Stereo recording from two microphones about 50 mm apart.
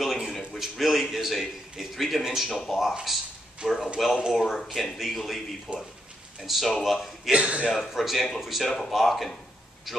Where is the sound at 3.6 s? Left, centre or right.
Centre.